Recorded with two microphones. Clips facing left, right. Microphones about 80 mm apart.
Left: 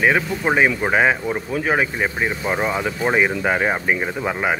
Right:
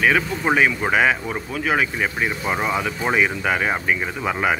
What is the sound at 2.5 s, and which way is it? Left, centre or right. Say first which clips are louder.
Speech: even; centre.